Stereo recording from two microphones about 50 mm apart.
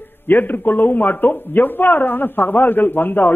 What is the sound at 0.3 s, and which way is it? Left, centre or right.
Speech, left.